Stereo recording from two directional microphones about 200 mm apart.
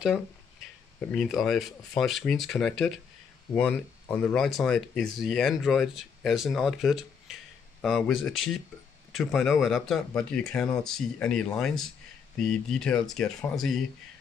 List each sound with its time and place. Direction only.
1.1 s speech: centre (ahead or behind)